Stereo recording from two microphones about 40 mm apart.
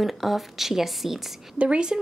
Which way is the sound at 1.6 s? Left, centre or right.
Right.